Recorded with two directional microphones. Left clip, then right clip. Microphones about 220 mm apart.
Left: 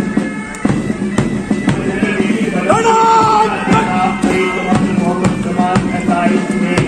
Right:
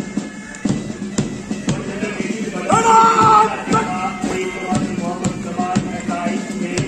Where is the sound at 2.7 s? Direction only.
60° right (ahead or behind).